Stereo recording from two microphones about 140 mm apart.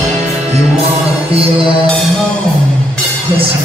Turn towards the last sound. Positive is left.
turn(degrees=-40)  # may be behind; listen again after turning